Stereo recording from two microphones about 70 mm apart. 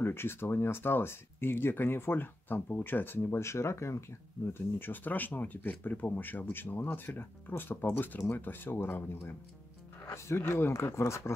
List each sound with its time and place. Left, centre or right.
0.0 s speech: left